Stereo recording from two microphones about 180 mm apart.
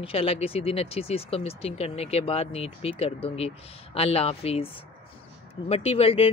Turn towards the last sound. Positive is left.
turn(degrees=35)  # may be behind; listen again after turning